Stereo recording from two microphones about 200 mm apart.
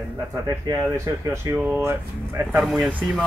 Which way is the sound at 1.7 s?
10° right (ahead or behind).